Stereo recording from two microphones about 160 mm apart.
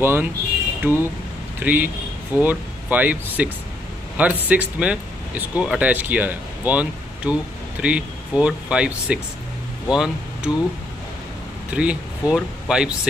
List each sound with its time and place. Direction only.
0.0 s speech: 15° right (ahead or behind)
11.7 s speech: 5° right (ahead or behind)